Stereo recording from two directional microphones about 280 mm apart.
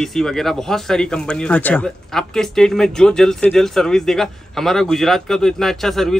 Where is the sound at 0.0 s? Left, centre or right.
Centre.